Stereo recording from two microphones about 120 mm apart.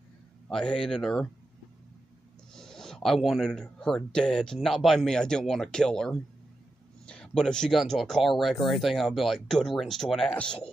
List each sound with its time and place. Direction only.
0.5 s speech: 5° left (ahead or behind)
2.5 s speech: 5° left (ahead or behind)